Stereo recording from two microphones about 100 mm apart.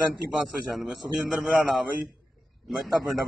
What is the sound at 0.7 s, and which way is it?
Speech, 5° right (ahead or behind).